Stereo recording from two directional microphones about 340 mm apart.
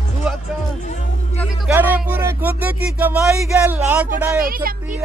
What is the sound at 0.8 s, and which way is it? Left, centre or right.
Music, left.